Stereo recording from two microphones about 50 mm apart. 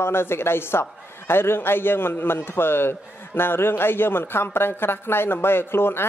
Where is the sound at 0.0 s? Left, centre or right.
Left.